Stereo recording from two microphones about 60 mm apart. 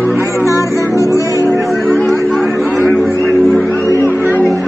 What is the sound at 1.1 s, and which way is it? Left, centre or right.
Music, left.